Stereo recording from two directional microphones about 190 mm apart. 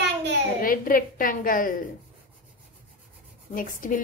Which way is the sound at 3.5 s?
45° left (ahead or behind).